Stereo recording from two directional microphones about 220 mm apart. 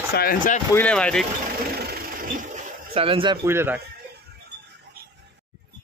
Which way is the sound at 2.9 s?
25° right (ahead or behind).